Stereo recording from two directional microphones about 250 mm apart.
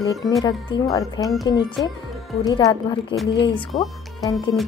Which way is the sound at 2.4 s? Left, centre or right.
Centre.